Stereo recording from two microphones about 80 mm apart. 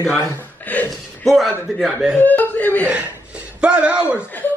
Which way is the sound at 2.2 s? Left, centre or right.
Left.